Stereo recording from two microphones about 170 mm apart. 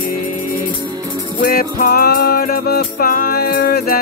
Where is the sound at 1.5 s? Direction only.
65° left (ahead or behind).